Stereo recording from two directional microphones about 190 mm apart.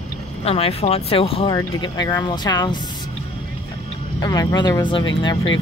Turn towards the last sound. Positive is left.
turn(degrees=25)  # may be behind; listen again after turning